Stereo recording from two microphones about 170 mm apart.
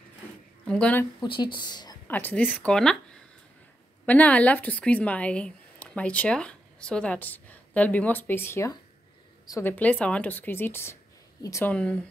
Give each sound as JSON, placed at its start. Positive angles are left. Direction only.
{"t": 0.7, "sound": "a woman's voice", "side_deg": 5}
{"t": 1.2, "sound": "speech", "side_deg": 30}
{"t": 2.0, "sound": "a woman's voice", "side_deg": 10}
{"t": 11.7, "sound": "a woman's voice", "side_deg": 5}